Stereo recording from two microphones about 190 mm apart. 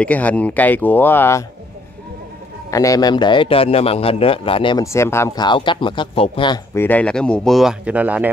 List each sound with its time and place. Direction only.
0.0 s speech: 10° left (ahead or behind)
2.7 s a man's voice: 15° left (ahead or behind)
4.8 s speech: 15° left (ahead or behind); by 8.3 s 10° right (ahead or behind)